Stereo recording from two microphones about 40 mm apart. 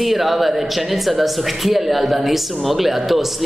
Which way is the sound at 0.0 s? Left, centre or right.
Centre.